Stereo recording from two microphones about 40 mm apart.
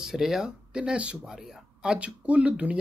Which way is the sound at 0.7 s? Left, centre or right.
Right.